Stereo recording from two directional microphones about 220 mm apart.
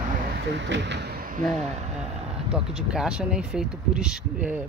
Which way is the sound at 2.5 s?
5° right (ahead or behind).